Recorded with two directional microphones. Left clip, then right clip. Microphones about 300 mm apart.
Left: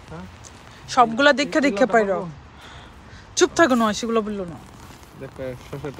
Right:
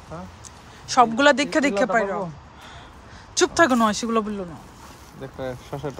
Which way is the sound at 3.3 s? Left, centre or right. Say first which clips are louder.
Left 1 dB; centre.